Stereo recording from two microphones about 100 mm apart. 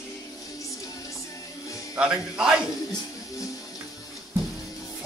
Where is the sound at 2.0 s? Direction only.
10° right (ahead or behind).